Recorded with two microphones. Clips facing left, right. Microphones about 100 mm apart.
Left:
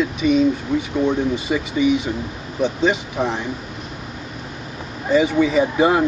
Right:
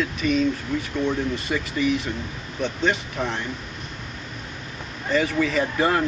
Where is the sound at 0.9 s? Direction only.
30° left (ahead or behind).